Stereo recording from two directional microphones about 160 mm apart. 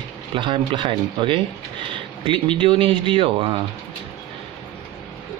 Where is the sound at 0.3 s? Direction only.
30° right (ahead or behind).